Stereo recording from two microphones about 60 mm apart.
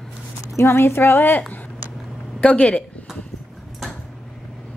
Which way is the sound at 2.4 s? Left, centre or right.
Centre.